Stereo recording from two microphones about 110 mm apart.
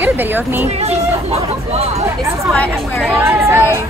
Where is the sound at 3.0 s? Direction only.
20° right (ahead or behind).